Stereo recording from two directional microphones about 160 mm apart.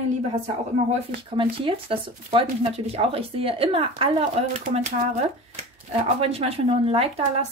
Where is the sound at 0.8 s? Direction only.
35° right (ahead or behind).